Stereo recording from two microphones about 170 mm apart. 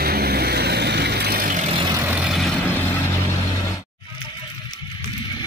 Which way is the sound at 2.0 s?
10° right (ahead or behind).